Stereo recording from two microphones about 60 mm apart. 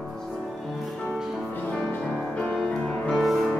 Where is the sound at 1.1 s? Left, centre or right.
Centre.